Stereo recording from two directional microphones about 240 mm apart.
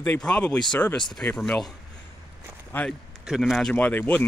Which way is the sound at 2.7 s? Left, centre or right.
Centre.